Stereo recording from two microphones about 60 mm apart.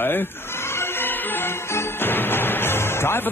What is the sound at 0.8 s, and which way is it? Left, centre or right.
Music, left.